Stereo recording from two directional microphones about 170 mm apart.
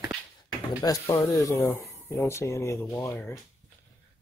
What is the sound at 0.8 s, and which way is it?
Speech, 20° left (ahead or behind).